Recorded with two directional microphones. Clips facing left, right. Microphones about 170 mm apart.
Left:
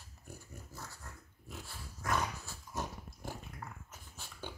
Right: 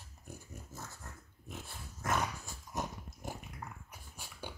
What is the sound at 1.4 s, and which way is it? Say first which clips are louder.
Dog: right 1 dB; 20° right (ahead or behind).